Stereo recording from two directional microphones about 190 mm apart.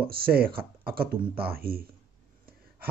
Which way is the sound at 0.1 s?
55° right (ahead or behind).